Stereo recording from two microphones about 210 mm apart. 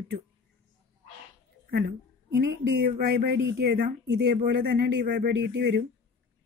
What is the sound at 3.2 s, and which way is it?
Speech, 55° right (ahead or behind).